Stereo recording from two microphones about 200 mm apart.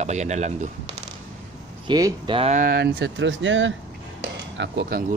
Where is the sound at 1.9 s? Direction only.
20° right (ahead or behind).